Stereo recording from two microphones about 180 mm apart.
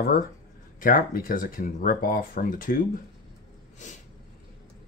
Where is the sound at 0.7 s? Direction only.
50° left (ahead or behind).